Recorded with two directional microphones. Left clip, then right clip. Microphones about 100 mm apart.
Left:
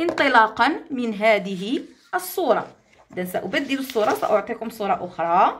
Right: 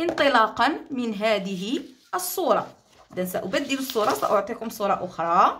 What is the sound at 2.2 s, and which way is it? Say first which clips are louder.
Speech: left 1 dB; 30° right (ahead or behind).